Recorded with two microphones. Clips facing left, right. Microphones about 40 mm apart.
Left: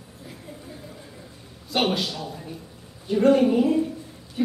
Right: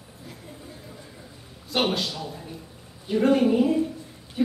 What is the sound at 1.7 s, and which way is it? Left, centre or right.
Speech, centre.